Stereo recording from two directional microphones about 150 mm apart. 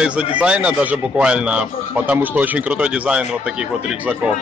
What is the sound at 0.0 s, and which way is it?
A man's voice, 10° right (ahead or behind).